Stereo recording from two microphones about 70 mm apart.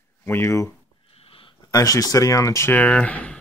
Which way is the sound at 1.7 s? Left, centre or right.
Left.